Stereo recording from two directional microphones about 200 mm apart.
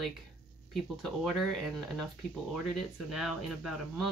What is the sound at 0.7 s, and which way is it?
Speech, centre (ahead or behind).